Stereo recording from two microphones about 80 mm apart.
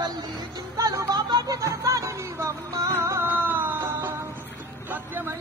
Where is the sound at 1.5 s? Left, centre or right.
Right.